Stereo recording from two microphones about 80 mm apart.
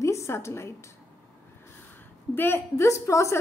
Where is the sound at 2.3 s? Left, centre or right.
Left.